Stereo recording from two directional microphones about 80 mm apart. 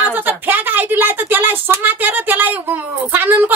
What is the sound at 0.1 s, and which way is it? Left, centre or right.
A woman's voice, right.